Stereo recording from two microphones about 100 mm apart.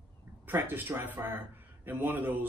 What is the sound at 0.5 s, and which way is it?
Speech, 20° right (ahead or behind).